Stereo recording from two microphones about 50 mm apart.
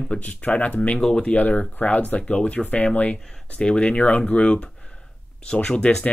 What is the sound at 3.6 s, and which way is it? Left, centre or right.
Speech, centre.